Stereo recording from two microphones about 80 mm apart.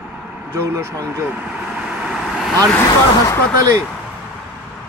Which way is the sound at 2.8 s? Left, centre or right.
Left.